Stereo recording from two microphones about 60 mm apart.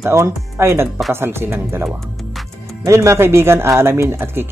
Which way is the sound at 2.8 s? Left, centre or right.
Right.